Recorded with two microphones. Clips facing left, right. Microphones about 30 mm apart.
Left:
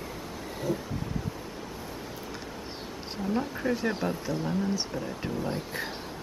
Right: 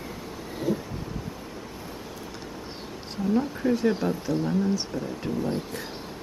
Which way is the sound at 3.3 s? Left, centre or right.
Centre.